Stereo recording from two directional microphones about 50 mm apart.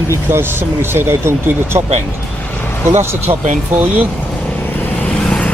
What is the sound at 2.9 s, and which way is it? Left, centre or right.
Speech, right.